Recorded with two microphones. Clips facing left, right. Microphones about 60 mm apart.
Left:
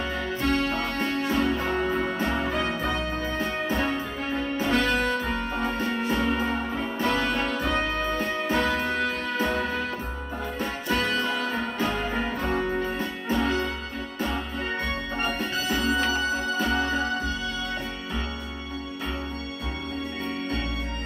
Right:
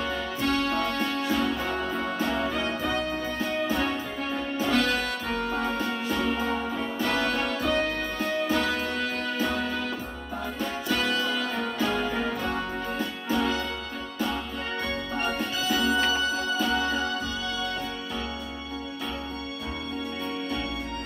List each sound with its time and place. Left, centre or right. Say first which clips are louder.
0.0 s music: left 1 dB; left
15.1 s music: even; left